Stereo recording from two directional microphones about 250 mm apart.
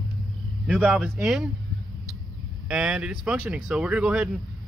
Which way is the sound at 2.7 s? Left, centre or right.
Centre.